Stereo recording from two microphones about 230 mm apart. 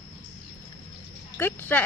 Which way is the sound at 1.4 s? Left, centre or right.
Centre.